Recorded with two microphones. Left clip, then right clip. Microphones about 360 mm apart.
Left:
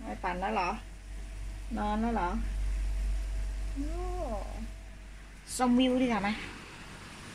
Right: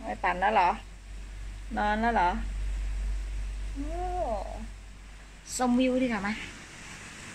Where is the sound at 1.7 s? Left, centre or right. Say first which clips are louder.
Right 6 dB; right.